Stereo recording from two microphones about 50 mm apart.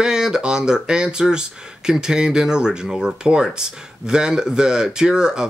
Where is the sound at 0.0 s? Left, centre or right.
Centre.